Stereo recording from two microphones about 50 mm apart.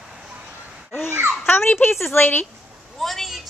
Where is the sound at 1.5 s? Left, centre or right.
Left.